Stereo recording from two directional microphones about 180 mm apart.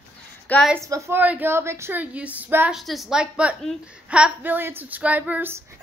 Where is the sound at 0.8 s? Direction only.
15° right (ahead or behind).